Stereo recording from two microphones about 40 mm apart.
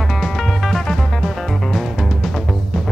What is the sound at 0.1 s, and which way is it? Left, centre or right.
Music, centre.